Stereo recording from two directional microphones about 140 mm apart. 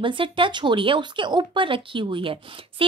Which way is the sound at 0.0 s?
35° right (ahead or behind).